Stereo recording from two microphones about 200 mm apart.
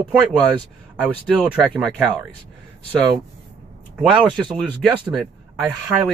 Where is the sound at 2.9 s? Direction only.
20° right (ahead or behind).